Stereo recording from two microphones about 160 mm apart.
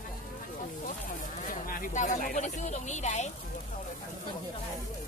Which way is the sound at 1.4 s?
60° left (ahead or behind).